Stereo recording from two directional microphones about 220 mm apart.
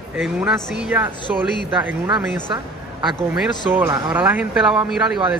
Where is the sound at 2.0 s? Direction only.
20° right (ahead or behind).